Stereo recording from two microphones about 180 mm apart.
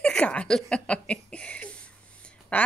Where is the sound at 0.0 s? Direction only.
5° left (ahead or behind).